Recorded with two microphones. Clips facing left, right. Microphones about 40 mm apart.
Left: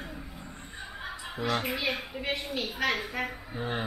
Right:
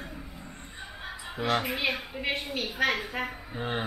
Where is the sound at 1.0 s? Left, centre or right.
Centre.